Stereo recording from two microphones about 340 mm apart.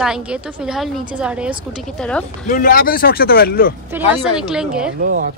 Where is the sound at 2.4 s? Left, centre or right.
Left.